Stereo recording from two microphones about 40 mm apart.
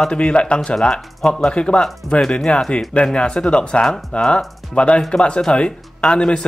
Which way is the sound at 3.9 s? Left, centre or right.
Centre.